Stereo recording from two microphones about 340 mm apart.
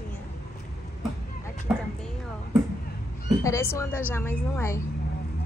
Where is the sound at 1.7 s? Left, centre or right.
Centre.